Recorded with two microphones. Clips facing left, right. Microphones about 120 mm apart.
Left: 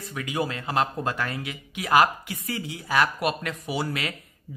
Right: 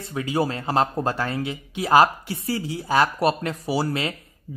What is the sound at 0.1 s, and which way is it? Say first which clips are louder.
Speech: right 5 dB; 30° right (ahead or behind).